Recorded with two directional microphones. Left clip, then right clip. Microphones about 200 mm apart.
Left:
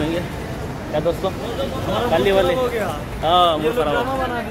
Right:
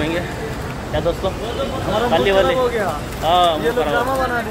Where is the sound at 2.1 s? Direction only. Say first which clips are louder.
Right 1 dB; 25° left (ahead or behind).